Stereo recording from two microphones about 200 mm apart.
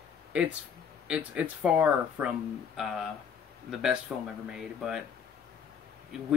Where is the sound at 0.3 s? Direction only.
5° right (ahead or behind).